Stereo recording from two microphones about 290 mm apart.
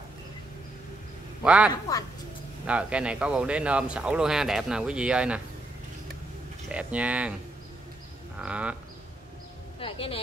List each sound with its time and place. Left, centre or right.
1.4 s speech: centre
1.7 s speech: centre
2.6 s speech: centre
6.7 s speech: centre
8.4 s speech: centre
9.8 s music: centre